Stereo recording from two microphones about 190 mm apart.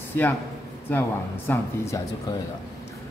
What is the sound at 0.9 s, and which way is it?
Speech, 10° left (ahead or behind).